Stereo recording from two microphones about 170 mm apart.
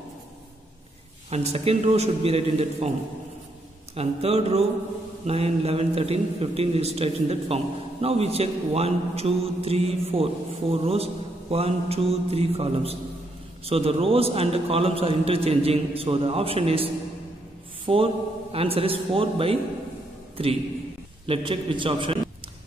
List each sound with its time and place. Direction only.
1.3 s a man's voice: 40° right (ahead or behind)
3.9 s a man's voice: 35° right (ahead or behind)
21.3 s a man's voice: 30° right (ahead or behind)